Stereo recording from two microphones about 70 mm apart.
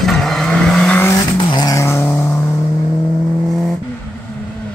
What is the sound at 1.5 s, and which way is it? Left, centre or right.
Vehicle, left.